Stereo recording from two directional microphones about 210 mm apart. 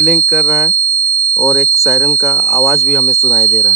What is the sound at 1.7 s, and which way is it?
Speech, centre (ahead or behind).